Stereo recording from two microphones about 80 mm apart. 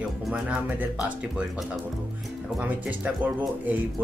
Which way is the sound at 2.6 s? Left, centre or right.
Centre.